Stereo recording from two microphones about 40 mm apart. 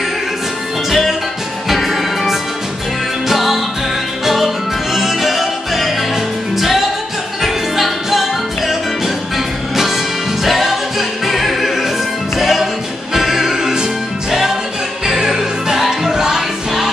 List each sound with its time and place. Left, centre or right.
0.8 s music: centre
4.9 s music: centre
10.4 s music: centre